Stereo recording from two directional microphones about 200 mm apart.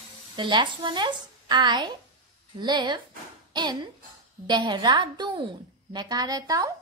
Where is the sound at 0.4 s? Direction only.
25° right (ahead or behind).